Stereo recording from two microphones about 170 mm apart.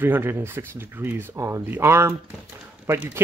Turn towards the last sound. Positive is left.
turn(degrees=-10)  # may be behind; listen again after turning